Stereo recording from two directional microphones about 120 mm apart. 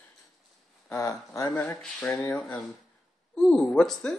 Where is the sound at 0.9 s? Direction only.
25° left (ahead or behind).